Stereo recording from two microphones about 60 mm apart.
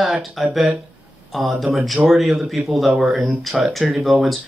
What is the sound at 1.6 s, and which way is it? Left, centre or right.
Speech, centre.